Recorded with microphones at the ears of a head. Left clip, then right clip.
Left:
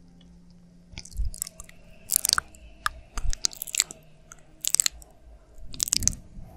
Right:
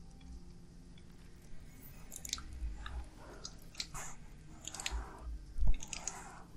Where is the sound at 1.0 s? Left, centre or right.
Left.